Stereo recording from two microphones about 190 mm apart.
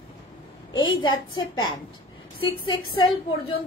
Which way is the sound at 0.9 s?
25° left (ahead or behind).